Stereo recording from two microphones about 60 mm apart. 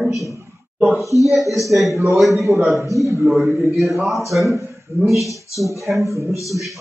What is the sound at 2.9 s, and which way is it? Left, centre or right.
Speech, right.